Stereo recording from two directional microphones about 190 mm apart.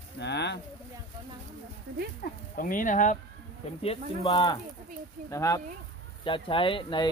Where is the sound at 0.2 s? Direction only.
65° left (ahead or behind).